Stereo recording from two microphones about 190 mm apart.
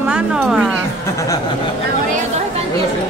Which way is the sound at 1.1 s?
15° left (ahead or behind).